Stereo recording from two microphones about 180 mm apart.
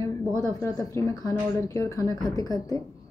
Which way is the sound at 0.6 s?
20° left (ahead or behind).